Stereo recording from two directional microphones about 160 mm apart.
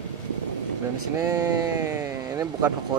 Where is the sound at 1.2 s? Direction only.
20° right (ahead or behind).